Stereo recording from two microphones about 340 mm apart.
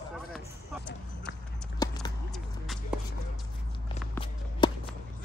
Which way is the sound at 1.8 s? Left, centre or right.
Centre.